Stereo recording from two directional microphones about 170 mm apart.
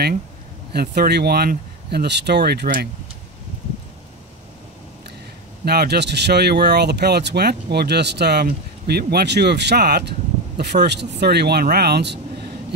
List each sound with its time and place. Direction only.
0.7 s speech: 70° right (ahead or behind)
5.7 s speech: 70° right (ahead or behind)